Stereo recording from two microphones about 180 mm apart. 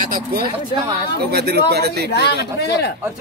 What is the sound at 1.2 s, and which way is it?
Speech, 65° right (ahead or behind).